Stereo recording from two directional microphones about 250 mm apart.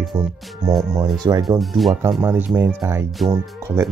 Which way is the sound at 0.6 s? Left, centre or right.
Centre.